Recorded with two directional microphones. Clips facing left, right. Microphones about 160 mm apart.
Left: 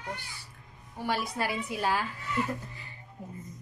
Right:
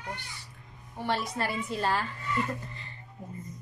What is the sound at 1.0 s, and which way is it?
Speech, 5° left (ahead or behind).